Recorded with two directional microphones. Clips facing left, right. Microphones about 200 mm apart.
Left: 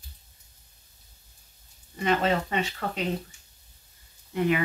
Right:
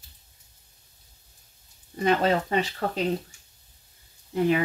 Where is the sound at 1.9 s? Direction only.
40° right (ahead or behind).